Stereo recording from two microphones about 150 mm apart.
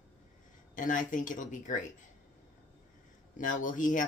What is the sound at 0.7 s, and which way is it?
Speech, 60° left (ahead or behind).